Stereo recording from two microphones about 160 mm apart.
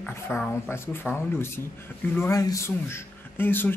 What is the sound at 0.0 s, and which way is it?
Speech, 10° left (ahead or behind).